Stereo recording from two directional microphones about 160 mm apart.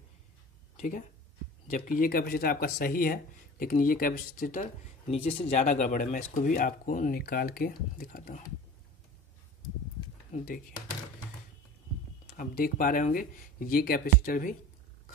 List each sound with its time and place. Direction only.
0.7 s speech: 50° left (ahead or behind)
5.1 s speech: 45° left (ahead or behind); by 8.5 s 60° left (ahead or behind)
12.3 s speech: 60° left (ahead or behind)